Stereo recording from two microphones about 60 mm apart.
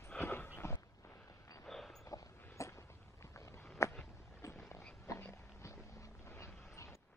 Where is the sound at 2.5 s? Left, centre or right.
Left.